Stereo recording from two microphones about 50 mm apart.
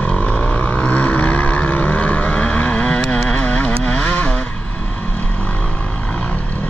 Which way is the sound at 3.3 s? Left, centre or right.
Left.